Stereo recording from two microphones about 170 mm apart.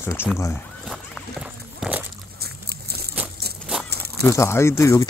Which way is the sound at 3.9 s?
70° right (ahead or behind).